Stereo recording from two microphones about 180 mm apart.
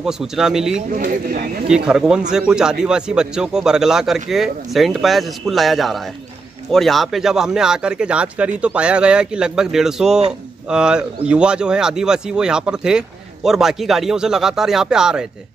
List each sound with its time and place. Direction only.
0.0 s speech: 5° right (ahead or behind)
0.9 s speech: 55° right (ahead or behind)
1.7 s speech: 5° right (ahead or behind)